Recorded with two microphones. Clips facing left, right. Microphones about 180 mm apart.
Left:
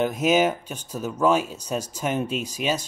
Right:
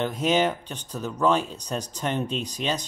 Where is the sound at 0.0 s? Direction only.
10° left (ahead or behind).